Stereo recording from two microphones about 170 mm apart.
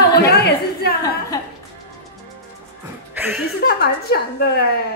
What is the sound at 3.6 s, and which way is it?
Speech, 65° left (ahead or behind).